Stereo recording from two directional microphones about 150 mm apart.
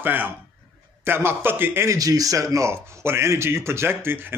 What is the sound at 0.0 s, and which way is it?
A man's voice, 15° right (ahead or behind).